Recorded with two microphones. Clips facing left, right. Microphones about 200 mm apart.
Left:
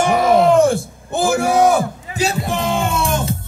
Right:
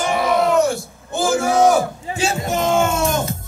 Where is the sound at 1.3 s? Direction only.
60° left (ahead or behind).